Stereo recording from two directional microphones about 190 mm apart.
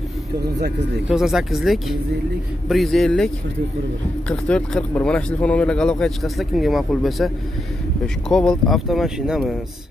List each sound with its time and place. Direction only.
0.4 s speech: 60° right (ahead or behind)
1.0 s speech: centre (ahead or behind)
4.3 s speech: 5° left (ahead or behind)